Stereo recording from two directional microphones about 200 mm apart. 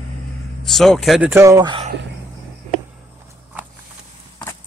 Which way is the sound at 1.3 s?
15° right (ahead or behind).